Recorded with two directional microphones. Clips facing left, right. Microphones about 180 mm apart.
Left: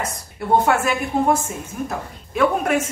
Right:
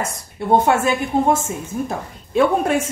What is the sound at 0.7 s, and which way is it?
A woman's voice, 25° right (ahead or behind).